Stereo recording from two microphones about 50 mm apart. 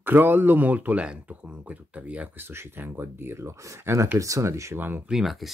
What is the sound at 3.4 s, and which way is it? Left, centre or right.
Speech, right.